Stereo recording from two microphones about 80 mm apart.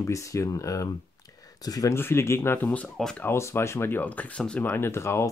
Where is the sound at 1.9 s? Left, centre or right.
Left.